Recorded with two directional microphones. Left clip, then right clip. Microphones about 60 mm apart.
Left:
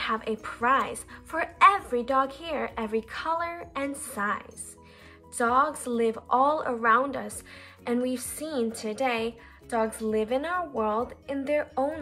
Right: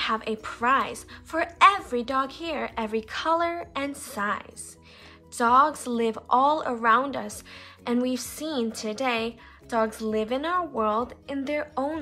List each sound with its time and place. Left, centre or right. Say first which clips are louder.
0.0 s a woman's voice: right 2 dB; centre
3.8 s a woman's voice: left 2 dB; centre
5.4 s a woman's voice: right 4 dB; right